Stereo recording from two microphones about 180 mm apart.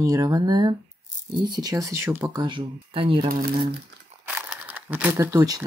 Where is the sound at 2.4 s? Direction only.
30° right (ahead or behind).